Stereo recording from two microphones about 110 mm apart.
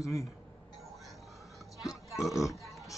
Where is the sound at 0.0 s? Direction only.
30° left (ahead or behind).